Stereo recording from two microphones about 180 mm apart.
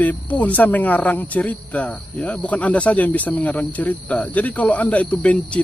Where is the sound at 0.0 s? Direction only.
10° left (ahead or behind).